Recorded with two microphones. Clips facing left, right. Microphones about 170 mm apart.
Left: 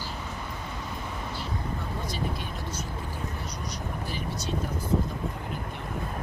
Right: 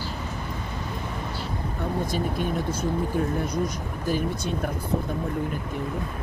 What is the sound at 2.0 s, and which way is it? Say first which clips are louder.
Speech: right 6 dB; 50° right (ahead or behind).